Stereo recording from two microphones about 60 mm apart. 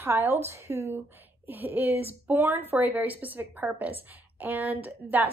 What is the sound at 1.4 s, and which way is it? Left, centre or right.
A woman's voice, right.